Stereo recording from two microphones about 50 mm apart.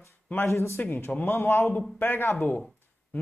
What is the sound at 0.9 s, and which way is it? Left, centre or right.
Speech, left.